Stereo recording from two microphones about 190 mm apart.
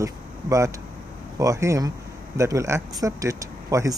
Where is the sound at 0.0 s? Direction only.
15° right (ahead or behind).